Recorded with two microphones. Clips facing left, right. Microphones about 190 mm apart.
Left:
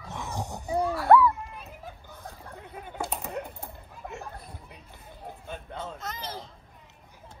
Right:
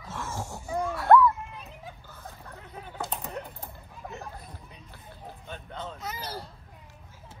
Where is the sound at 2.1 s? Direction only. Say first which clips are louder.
Left 2 dB; 15° left (ahead or behind).